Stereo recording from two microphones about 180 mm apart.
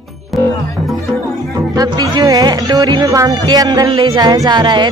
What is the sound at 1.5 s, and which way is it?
Music, 20° right (ahead or behind).